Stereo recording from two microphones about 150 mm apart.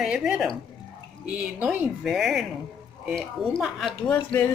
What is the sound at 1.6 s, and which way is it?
A woman's voice, 10° right (ahead or behind).